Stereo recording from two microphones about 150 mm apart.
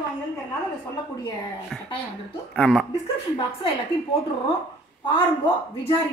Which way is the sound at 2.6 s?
Centre (ahead or behind).